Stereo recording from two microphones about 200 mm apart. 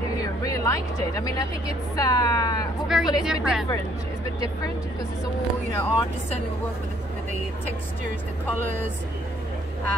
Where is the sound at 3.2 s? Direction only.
5° right (ahead or behind).